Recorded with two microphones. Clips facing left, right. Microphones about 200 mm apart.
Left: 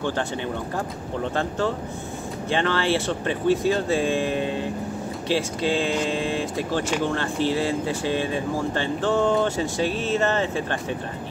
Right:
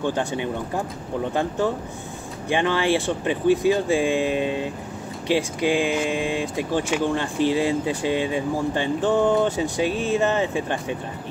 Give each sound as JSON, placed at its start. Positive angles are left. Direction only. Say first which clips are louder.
{"t": 0.0, "sound": "speech", "louder": "right 2 dB", "side_deg": -15}